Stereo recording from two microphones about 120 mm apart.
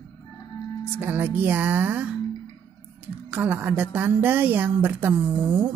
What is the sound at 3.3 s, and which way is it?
A woman's voice, 15° right (ahead or behind).